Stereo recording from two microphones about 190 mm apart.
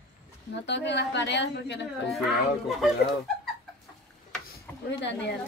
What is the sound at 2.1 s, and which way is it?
Speech, centre (ahead or behind).